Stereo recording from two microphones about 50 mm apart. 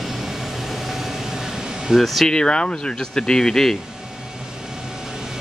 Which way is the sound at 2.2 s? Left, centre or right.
Centre.